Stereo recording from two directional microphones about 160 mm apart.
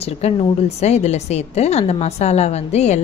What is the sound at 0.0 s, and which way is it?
A woman's voice, 40° left (ahead or behind).